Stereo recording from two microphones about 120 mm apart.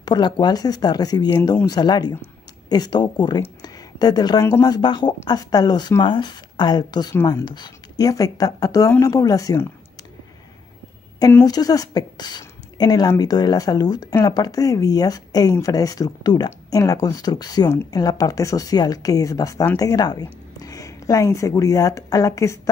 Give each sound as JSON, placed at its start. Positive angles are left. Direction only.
{"t": 0.0, "sound": "speech", "side_deg": 35}
{"t": 11.4, "sound": "speech", "side_deg": 30}